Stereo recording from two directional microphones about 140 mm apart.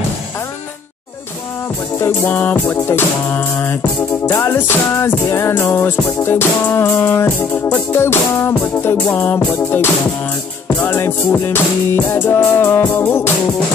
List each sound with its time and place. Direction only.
2.0 s music: 15° left (ahead or behind)
10.9 s music: 15° left (ahead or behind)